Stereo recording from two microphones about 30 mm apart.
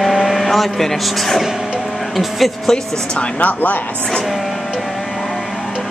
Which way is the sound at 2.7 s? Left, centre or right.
Left.